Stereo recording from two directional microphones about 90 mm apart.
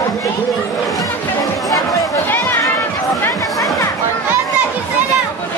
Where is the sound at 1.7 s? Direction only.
40° left (ahead or behind).